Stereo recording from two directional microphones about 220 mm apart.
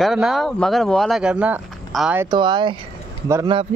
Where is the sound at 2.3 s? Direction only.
20° right (ahead or behind).